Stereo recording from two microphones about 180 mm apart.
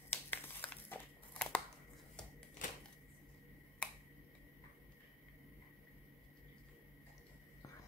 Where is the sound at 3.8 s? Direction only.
5° left (ahead or behind).